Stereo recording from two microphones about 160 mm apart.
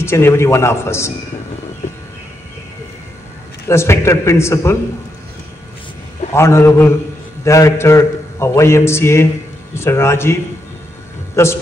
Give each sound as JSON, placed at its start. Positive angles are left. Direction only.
{"t": 0.0, "sound": "a man's voice", "side_deg": 15}
{"t": 3.6, "sound": "a man's voice", "side_deg": 15}
{"t": 6.3, "sound": "a man's voice", "side_deg": 15}
{"t": 11.4, "sound": "a man's voice", "side_deg": 15}